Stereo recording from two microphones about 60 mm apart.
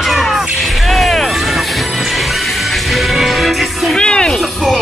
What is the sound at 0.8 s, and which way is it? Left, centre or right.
Vehicle, centre.